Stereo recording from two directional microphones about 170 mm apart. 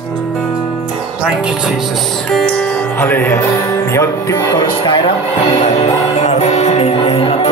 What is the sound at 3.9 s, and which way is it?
Speech, 20° left (ahead or behind).